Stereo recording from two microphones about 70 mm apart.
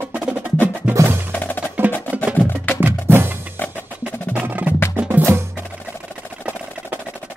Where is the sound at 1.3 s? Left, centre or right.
Left.